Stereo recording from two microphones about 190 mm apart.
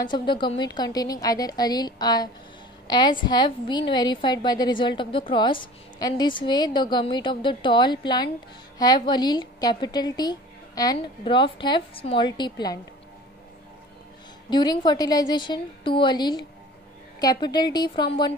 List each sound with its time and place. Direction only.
0.1 s a woman's voice: 25° left (ahead or behind)
14.5 s a woman's voice: 20° left (ahead or behind)